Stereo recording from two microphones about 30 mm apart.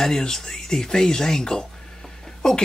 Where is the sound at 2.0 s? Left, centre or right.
Centre.